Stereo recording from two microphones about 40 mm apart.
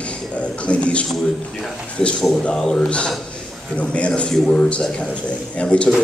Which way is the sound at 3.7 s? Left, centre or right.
Left.